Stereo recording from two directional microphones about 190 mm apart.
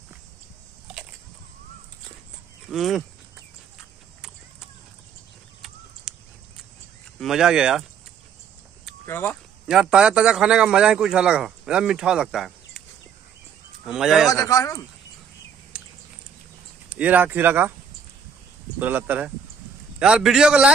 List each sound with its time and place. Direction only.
2.7 s a man's voice: centre (ahead or behind)
6.1 s a sound: 5° right (ahead or behind)
7.2 s a man's voice: centre (ahead or behind)
9.0 s speech: 10° left (ahead or behind)
9.7 s a man's voice: 5° right (ahead or behind)
13.8 s a man's voice: 5° right (ahead or behind)
14.3 s speech: 15° left (ahead or behind)
15.7 s a sound: 5° right (ahead or behind)
16.9 s speech: 10° right (ahead or behind)
18.8 s a man's voice: 10° right (ahead or behind)